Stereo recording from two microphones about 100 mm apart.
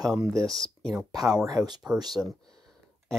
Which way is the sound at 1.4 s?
40° right (ahead or behind).